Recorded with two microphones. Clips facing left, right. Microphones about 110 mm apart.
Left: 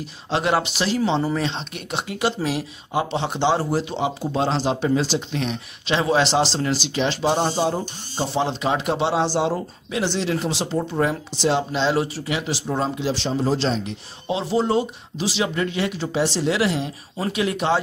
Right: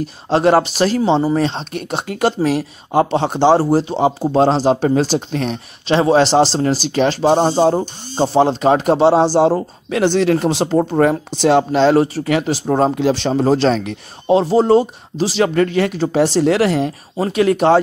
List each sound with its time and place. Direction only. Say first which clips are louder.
0.0 s speech: right 9 dB; 40° right (ahead or behind)
9.8 s speech: right 9 dB; 55° right (ahead or behind)
14.2 s speech: right 9 dB; 40° right (ahead or behind)